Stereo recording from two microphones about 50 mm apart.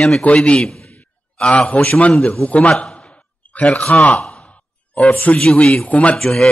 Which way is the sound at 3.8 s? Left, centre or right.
Left.